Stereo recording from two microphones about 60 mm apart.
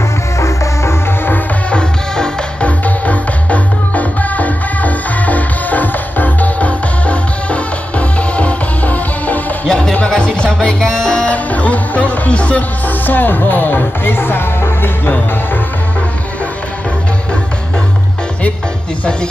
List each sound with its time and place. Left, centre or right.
0.4 s music: left
1.7 s music: centre
9.7 s music: centre; by 15.1 s left